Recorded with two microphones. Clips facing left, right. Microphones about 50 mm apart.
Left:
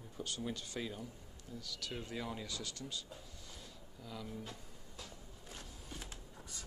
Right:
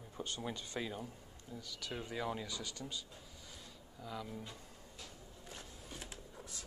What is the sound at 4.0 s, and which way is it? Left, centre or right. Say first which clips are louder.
Speech: right 2 dB; centre.